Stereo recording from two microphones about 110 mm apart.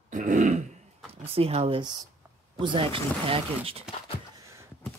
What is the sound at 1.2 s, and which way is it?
Speech, 60° right (ahead or behind).